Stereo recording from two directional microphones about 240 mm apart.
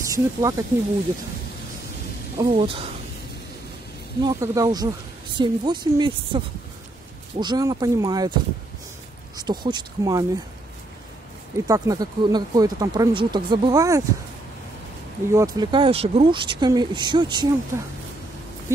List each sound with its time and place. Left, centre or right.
0.0 s speech: centre
2.3 s speech: right
4.2 s speech: centre
9.4 s speech: centre
11.6 s speech: centre
15.3 s speech: centre